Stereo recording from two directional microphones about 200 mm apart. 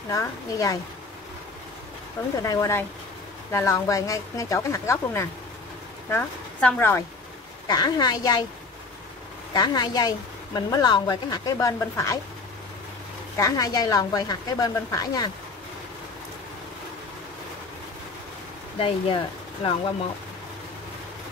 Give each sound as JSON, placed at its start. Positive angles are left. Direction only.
{"t": 0.1, "sound": "speech", "side_deg": 15}
{"t": 2.4, "sound": "a woman's voice", "side_deg": 15}
{"t": 9.5, "sound": "a woman's voice", "side_deg": 20}
{"t": 13.4, "sound": "a woman's voice", "side_deg": 20}
{"t": 18.8, "sound": "a woman's voice", "side_deg": 30}